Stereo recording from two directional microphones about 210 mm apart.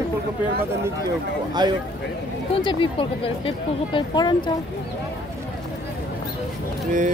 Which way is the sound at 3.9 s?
20° left (ahead or behind).